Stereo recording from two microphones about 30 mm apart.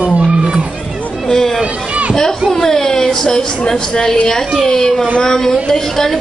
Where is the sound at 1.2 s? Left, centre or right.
Centre.